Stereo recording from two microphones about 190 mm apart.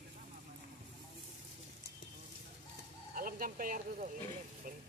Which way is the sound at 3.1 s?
50° right (ahead or behind).